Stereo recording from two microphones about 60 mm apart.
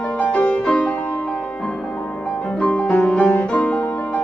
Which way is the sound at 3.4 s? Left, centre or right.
Centre.